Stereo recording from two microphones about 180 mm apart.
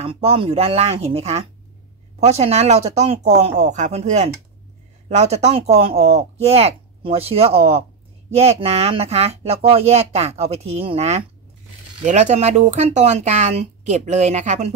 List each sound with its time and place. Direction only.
0.0 s speech: 35° right (ahead or behind)